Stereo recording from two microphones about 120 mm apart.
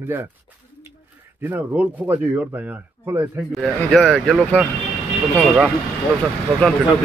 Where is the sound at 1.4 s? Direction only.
15° right (ahead or behind).